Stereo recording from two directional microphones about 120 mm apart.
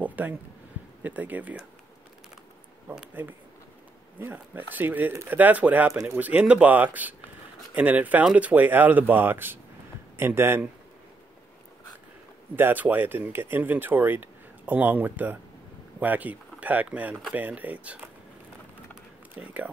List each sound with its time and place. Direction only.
0.0 s a sound: 15° right (ahead or behind)
1.0 s speech: 15° right (ahead or behind)
2.9 s speech: 10° right (ahead or behind)
12.5 s speech: 15° right (ahead or behind)